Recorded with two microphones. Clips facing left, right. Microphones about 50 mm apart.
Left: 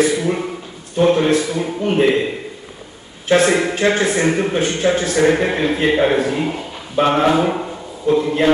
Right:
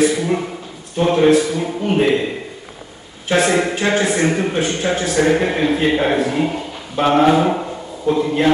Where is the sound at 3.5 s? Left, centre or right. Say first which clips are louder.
Left 1 dB; centre.